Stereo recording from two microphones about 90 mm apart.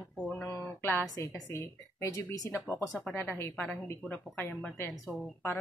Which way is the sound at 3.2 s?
25° left (ahead or behind).